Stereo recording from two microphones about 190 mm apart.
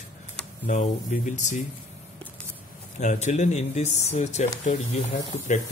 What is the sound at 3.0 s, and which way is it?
Speech, 35° left (ahead or behind).